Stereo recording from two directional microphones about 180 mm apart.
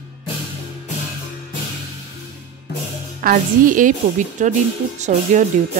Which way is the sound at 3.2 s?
45° right (ahead or behind).